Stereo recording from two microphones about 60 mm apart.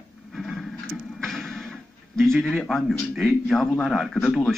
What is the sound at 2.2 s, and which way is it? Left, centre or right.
Speech, centre.